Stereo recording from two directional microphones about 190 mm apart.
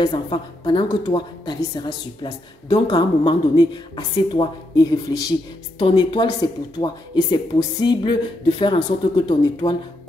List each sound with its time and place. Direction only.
0.0 s a woman's voice: 20° left (ahead or behind)